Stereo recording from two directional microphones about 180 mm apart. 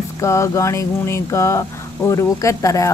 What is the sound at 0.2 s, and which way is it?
Speech, 15° left (ahead or behind).